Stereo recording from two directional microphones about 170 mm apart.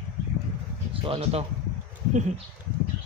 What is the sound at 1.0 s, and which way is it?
Speech, 35° right (ahead or behind).